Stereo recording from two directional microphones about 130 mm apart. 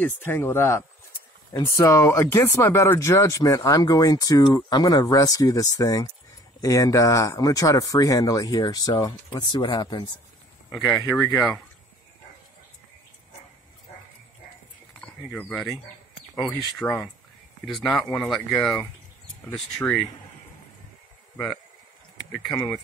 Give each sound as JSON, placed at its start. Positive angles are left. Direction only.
{"t": 0.0, "sound": "speech", "side_deg": 15}
{"t": 10.9, "sound": "speech", "side_deg": 5}
{"t": 15.0, "sound": "speech", "side_deg": 10}